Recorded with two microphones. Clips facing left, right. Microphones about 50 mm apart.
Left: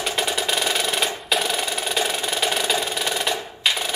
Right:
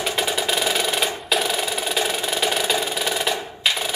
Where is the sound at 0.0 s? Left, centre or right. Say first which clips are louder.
Right 1 dB; centre.